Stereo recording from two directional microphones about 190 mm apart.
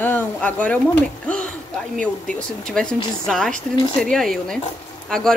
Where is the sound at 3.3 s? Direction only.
5° left (ahead or behind).